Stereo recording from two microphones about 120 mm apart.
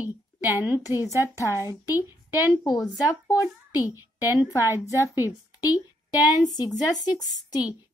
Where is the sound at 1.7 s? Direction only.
30° left (ahead or behind).